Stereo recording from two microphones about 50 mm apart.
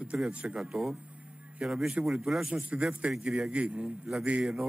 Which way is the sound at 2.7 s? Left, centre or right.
Right.